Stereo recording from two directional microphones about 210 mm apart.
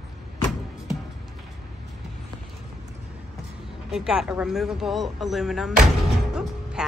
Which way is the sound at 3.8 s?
Centre (ahead or behind).